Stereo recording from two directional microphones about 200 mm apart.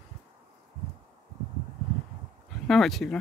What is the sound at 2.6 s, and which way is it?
Speech, centre (ahead or behind).